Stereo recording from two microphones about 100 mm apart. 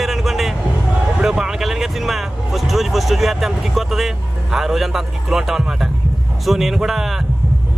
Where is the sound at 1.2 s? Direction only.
5° right (ahead or behind).